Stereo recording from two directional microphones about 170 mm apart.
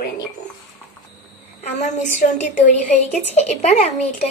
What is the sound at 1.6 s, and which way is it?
A woman's voice, 40° left (ahead or behind).